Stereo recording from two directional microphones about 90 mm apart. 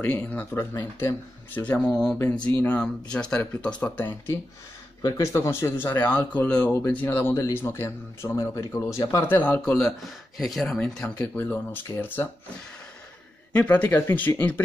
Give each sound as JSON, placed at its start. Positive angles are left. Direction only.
{"t": 0.0, "sound": "speech", "side_deg": 20}
{"t": 1.8, "sound": "speech", "side_deg": 5}
{"t": 2.6, "sound": "speech", "side_deg": 15}
{"t": 5.0, "sound": "speech", "side_deg": 35}
{"t": 6.0, "sound": "speech", "side_deg": 20}
{"t": 9.3, "sound": "speech", "side_deg": 20}
{"t": 9.8, "sound": "speech", "side_deg": 0}
{"t": 10.7, "sound": "speech", "side_deg": 15}
{"t": 13.6, "sound": "speech", "side_deg": 20}